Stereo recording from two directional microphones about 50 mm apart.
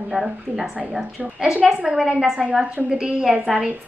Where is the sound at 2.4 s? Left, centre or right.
Centre.